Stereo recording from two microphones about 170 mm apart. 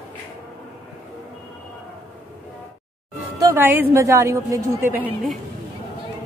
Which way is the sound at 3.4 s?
15° right (ahead or behind).